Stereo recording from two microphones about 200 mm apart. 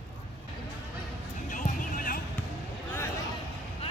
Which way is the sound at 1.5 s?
40° left (ahead or behind).